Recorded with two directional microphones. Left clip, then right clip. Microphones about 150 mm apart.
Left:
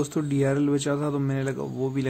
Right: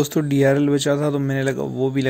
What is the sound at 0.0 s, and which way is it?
Speech, 25° right (ahead or behind).